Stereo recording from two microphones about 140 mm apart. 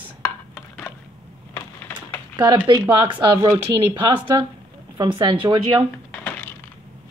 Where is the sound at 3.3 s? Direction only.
25° right (ahead or behind).